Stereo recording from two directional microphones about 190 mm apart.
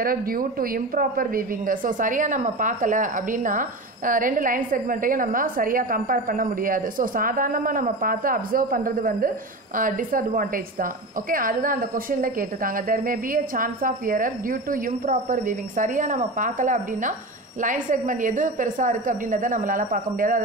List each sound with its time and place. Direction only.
0.0 s a woman's voice: 50° right (ahead or behind)